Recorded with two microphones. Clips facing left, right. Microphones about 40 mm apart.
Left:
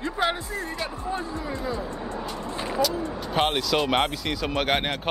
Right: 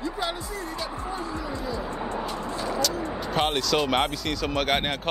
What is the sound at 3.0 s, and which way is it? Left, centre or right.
Vehicle, centre.